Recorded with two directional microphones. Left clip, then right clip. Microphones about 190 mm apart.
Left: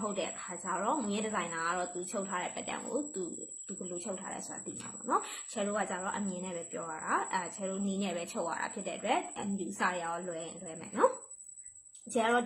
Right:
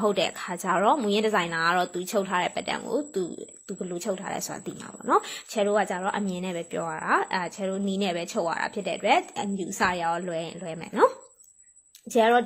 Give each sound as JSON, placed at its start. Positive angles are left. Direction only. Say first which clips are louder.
{"t": 0.0, "sound": "a woman's voice", "louder": "right 12 dB", "side_deg": -50}
{"t": 5.6, "sound": "a woman's voice", "louder": "right 10 dB", "side_deg": -40}
{"t": 12.1, "sound": "a woman's voice", "louder": "right 9 dB", "side_deg": -35}